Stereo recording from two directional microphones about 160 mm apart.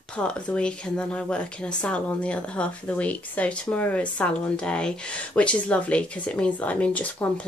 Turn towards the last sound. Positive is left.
turn(degrees=10)  # may be behind; listen again after turning